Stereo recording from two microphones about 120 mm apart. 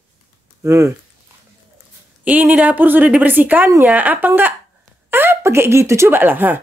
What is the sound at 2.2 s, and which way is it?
A woman's voice, 15° right (ahead or behind).